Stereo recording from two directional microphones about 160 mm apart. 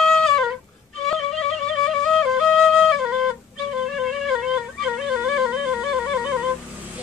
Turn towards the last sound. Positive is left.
turn(degrees=-5)  # may be behind; listen again after turning